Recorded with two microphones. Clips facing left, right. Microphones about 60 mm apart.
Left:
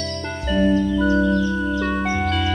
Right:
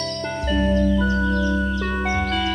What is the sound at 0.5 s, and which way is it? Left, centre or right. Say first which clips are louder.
Music: left 3 dB; centre.